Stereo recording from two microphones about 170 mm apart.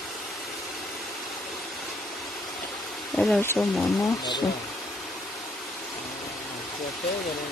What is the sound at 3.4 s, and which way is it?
Speech, 15° left (ahead or behind).